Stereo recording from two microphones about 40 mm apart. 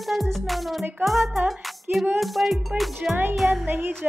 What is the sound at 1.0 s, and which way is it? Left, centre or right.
Speech, centre.